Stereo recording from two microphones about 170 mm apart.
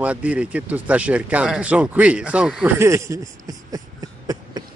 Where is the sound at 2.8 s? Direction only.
15° right (ahead or behind).